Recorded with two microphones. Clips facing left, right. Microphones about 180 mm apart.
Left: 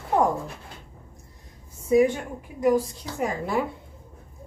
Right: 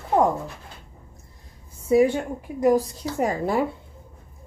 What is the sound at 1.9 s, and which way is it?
A woman's voice, 30° right (ahead or behind).